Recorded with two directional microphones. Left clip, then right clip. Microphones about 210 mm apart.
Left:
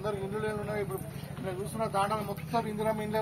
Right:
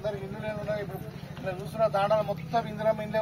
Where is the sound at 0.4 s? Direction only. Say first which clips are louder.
Right 1 dB; 15° right (ahead or behind).